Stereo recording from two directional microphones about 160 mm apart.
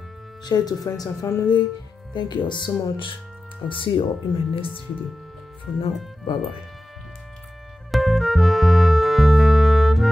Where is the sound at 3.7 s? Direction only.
35° left (ahead or behind).